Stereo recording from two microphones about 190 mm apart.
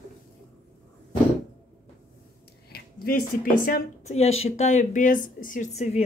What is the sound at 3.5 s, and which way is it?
Speech, 45° left (ahead or behind).